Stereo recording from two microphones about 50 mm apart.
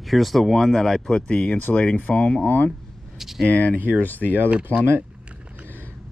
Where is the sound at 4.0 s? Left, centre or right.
Left.